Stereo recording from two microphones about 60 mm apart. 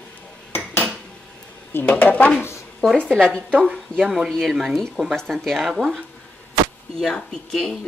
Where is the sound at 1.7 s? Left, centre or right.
Left.